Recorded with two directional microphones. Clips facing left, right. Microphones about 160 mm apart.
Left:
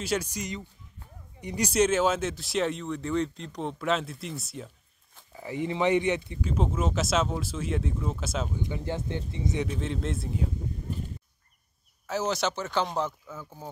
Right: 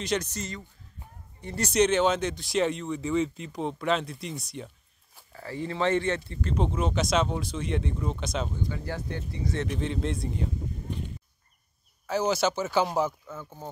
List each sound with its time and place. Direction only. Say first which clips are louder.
0.0 s a man's voice: even; 10° left (ahead or behind)
5.3 s speech: left 2 dB; 15° left (ahead or behind)
8.6 s speech: left 2 dB; 20° left (ahead or behind)
9.8 s speech: right 2 dB; centre (ahead or behind)
12.1 s speech: right 3 dB; centre (ahead or behind)